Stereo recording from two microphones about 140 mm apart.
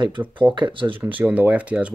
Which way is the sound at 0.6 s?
35° right (ahead or behind).